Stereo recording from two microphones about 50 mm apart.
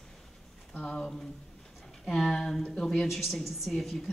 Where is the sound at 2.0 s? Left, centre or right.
Centre.